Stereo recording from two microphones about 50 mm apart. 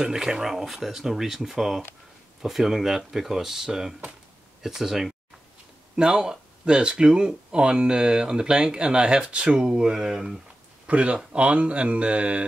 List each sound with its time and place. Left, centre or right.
0.0 s speech: centre
10.9 s speech: right